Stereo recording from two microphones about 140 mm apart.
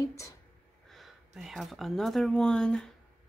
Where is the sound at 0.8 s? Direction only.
Centre (ahead or behind).